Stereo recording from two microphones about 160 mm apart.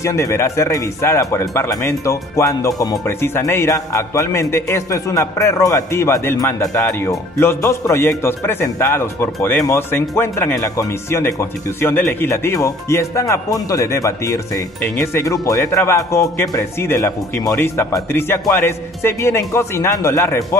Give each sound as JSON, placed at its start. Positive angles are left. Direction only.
{"t": 0.0, "sound": "speech", "side_deg": 20}